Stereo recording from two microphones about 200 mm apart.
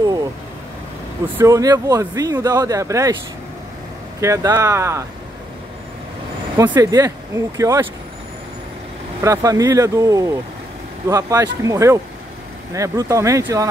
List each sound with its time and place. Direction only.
1.2 s speech: 15° right (ahead or behind)
4.2 s speech: 15° right (ahead or behind)
6.5 s speech: 20° right (ahead or behind)
9.2 s speech: 15° right (ahead or behind)